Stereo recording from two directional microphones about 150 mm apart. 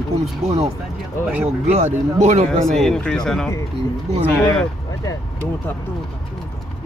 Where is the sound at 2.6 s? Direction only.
5° left (ahead or behind).